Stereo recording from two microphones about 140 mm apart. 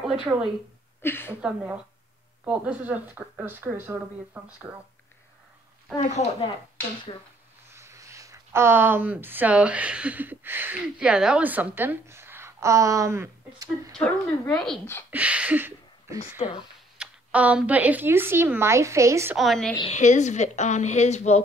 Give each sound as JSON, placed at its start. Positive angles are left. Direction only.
{"t": 0.0, "sound": "speech", "side_deg": -5}
{"t": 1.0, "sound": "speech", "side_deg": 15}
{"t": 1.4, "sound": "speech", "side_deg": -10}
{"t": 5.9, "sound": "a woman's voice", "side_deg": 55}
{"t": 7.7, "sound": "speech", "side_deg": -20}
{"t": 13.9, "sound": "speech", "side_deg": 10}
{"t": 15.0, "sound": "speech", "side_deg": -10}
{"t": 16.4, "sound": "speech", "side_deg": 45}
{"t": 17.0, "sound": "speech", "side_deg": -10}
{"t": 19.3, "sound": "speech", "side_deg": 0}
{"t": 19.9, "sound": "a woman's voice", "side_deg": 55}